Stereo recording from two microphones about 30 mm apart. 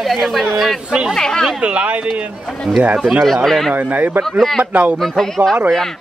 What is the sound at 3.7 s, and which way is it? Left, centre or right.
A man's voice, right.